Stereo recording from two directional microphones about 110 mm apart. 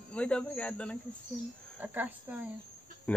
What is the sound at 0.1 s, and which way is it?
Speech, 10° left (ahead or behind).